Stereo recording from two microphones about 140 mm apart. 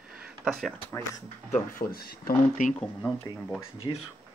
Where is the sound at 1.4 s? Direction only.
70° left (ahead or behind).